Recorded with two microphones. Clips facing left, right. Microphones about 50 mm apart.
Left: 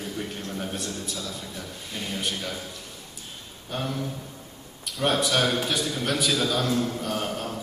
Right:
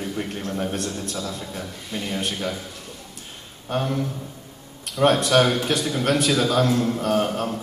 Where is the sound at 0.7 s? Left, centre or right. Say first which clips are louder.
Right 5 dB; right.